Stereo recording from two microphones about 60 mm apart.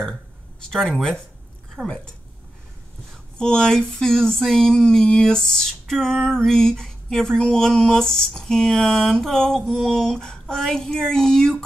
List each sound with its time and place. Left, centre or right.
0.0 s speech: centre
3.3 s speech: centre